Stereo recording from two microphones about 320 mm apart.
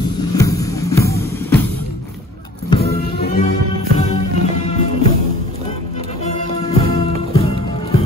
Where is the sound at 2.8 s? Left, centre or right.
Left.